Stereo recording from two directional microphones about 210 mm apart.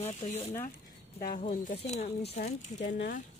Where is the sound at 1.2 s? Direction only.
40° left (ahead or behind).